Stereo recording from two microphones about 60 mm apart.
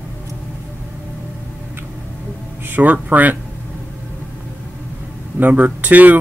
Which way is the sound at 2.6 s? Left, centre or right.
Right.